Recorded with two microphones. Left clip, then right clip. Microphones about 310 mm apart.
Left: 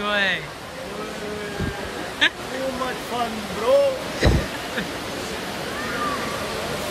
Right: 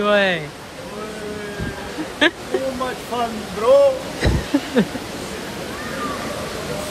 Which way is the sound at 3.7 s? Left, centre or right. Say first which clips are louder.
Right 5 dB; centre.